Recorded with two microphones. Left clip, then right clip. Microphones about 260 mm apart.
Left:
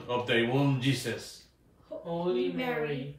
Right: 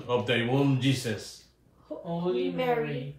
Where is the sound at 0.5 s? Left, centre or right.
Right.